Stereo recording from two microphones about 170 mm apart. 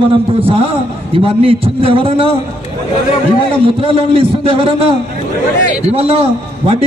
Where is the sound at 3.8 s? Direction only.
30° right (ahead or behind).